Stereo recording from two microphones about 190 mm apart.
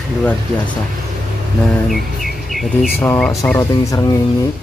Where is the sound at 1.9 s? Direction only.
Centre (ahead or behind).